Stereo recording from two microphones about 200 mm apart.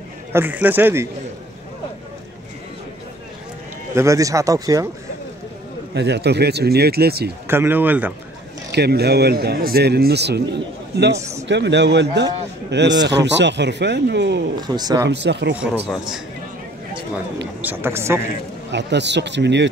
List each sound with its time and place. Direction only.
0.3 s speech: 10° right (ahead or behind)
3.9 s speech: 15° right (ahead or behind)
5.9 s a man's voice: 55° right (ahead or behind)
7.4 s speech: 10° right (ahead or behind)
8.7 s a man's voice: 55° right (ahead or behind)
14.6 s a man's voice: 20° right (ahead or behind)
15.0 s a man's voice: 60° right (ahead or behind)
15.6 s a man's voice: 5° right (ahead or behind)
17.6 s speech: 10° right (ahead or behind)
18.7 s a man's voice: 60° right (ahead or behind)